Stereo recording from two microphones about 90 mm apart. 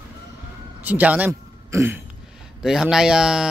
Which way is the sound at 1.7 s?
30° right (ahead or behind).